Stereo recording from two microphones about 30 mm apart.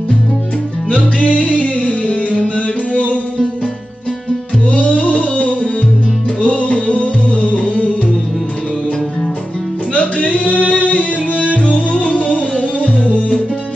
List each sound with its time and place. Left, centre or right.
1.2 s music: left
4.6 s music: left
9.9 s music: left